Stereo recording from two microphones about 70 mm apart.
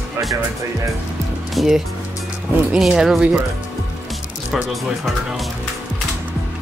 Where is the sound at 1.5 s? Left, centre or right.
Centre.